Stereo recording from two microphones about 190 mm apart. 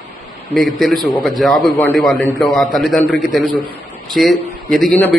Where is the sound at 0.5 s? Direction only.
Centre (ahead or behind).